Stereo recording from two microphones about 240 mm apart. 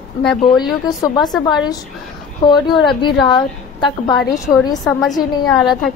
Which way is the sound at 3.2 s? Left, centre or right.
Centre.